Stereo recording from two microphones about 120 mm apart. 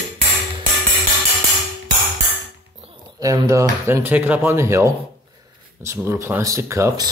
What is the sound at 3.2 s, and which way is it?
Speech, 30° right (ahead or behind).